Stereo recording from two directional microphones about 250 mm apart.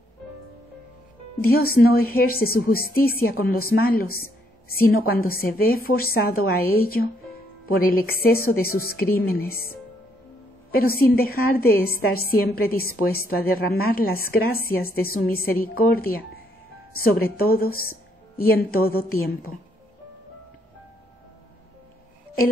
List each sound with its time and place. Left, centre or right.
1.5 s a woman's voice: left